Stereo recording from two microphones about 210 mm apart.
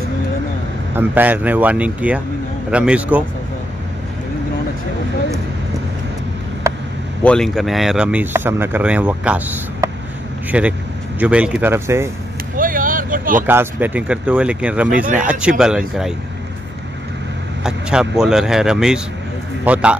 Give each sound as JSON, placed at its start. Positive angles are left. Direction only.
{"t": 0.9, "sound": "speech", "side_deg": -10}
{"t": 6.7, "sound": "vehicle", "side_deg": -15}
{"t": 7.2, "sound": "speech", "side_deg": 0}
{"t": 12.5, "sound": "vehicle", "side_deg": -40}
{"t": 13.5, "sound": "speech", "side_deg": -10}
{"t": 17.6, "sound": "a man's voice", "side_deg": -5}